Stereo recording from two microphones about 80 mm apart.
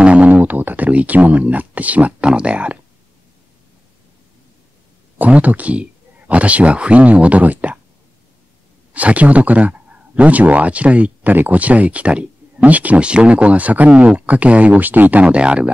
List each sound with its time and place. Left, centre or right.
0.0 s speech: centre
5.2 s speech: centre
8.9 s speech: centre